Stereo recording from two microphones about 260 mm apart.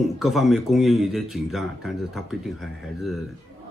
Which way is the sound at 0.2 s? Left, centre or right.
Centre.